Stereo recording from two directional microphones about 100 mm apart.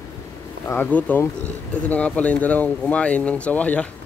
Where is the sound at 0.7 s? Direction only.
20° left (ahead or behind).